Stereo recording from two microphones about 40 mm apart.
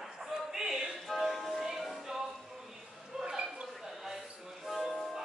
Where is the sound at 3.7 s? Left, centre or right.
Centre.